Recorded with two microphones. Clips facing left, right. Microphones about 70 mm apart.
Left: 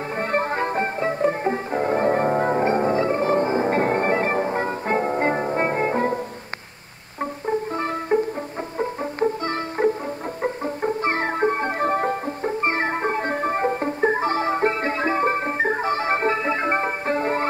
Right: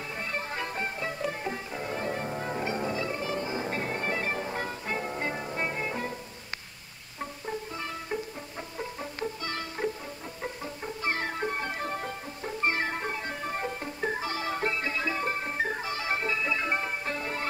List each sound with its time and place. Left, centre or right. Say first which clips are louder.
0.2 s music: left 12 dB; left
7.2 s music: left 11 dB; left